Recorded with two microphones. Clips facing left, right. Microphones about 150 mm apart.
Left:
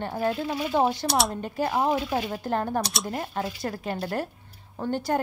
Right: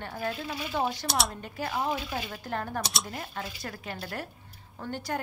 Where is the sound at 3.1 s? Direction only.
35° left (ahead or behind).